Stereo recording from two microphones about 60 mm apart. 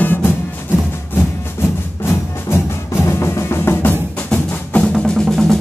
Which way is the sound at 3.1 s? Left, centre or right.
Left.